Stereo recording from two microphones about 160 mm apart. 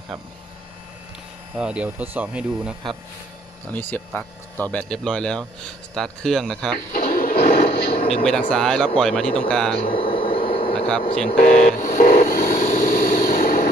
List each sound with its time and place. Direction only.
1.6 s speech: 10° right (ahead or behind)
3.7 s speech: 10° left (ahead or behind)
6.9 s television: 60° left (ahead or behind); by 7.8 s 80° left
8.2 s speech: 5° left (ahead or behind)
9.9 s a sound: 35° left (ahead or behind)
10.4 s vehicle: 35° left (ahead or behind)
11.2 s a sound: 60° left (ahead or behind)